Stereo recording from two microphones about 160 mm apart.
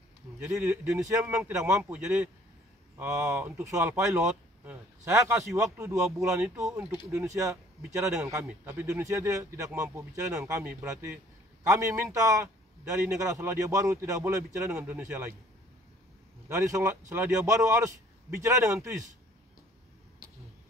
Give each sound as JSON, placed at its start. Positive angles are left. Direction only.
{"t": 0.4, "sound": "speech", "side_deg": -5}
{"t": 8.8, "sound": "a man's voice", "side_deg": -20}
{"t": 16.4, "sound": "a man's voice", "side_deg": -20}